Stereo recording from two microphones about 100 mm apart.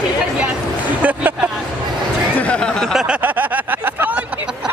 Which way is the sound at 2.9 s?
10° right (ahead or behind).